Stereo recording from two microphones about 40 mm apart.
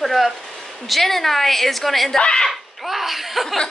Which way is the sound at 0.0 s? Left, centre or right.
Centre.